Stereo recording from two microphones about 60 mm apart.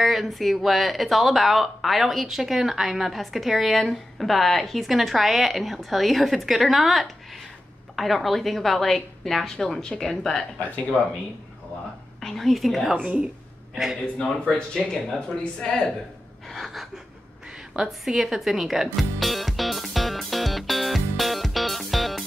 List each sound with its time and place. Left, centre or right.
0.0 s speech: centre
10.9 s speech: centre
12.2 s speech: centre
12.9 s a woman's voice: centre
14.7 s speech: centre
16.4 s gasp: centre
17.7 s music: centre